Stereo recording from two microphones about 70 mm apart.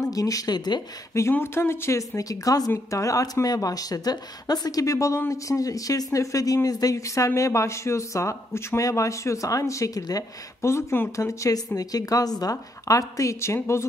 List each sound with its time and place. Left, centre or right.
0.0 s speech: left
1.4 s a woman's voice: left
10.6 s a woman's voice: left